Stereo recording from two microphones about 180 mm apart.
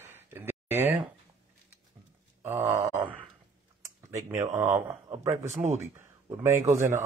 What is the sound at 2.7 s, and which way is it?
Speech, 15° right (ahead or behind).